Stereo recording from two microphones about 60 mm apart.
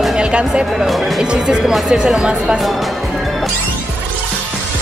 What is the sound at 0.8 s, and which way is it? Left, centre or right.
Speech, centre.